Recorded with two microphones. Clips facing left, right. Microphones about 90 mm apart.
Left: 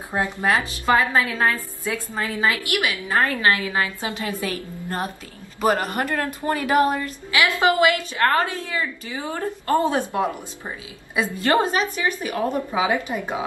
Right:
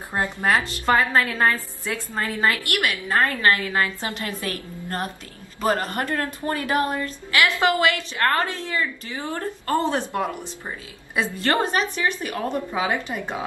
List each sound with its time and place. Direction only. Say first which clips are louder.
0.1 s a woman's voice: even; 5° left (ahead or behind)